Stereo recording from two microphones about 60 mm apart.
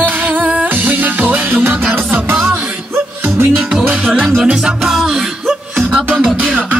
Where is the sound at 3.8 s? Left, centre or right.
Right.